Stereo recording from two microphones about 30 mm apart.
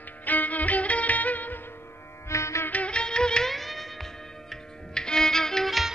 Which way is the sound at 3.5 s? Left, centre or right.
Centre.